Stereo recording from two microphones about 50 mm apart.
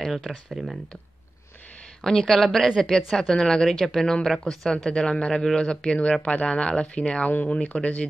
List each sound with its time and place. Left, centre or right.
0.0 s speech: centre
2.0 s speech: centre